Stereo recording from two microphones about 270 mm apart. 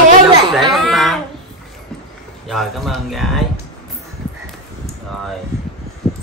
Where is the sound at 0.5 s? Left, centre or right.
Centre.